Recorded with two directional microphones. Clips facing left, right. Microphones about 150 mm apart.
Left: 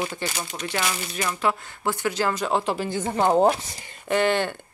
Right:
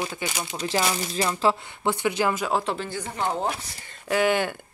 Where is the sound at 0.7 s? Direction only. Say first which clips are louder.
Right 4 dB; 30° right (ahead or behind).